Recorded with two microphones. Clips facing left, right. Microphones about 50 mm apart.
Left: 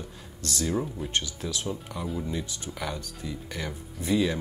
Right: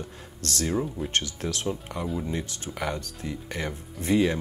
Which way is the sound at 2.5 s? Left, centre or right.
Right.